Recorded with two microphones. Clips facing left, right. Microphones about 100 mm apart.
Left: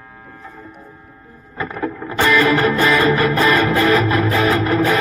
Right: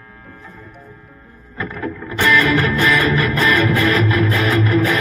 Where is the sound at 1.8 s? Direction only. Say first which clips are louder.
Left 1 dB; 20° left (ahead or behind).